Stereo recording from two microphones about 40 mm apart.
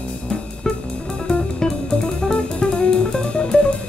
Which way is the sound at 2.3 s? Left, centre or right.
Left.